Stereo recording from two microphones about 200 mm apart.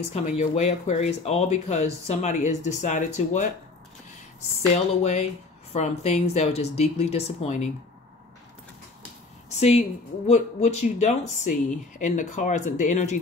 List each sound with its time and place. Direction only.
0.1 s speech: 35° left (ahead or behind)
5.0 s speech: 35° left (ahead or behind)
9.6 s speech: 35° left (ahead or behind)